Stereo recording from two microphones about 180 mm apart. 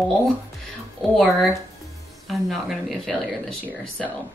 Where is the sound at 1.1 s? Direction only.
Centre (ahead or behind).